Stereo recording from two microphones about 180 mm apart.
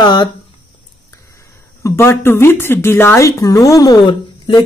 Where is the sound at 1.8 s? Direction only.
15° left (ahead or behind).